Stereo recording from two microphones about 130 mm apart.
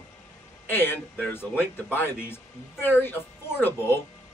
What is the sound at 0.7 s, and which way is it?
Speech, 15° left (ahead or behind).